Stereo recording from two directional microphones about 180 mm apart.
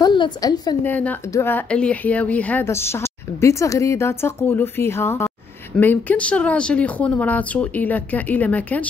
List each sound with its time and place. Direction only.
0.0 s a woman's voice: 25° left (ahead or behind)
0.8 s speech: 10° left (ahead or behind)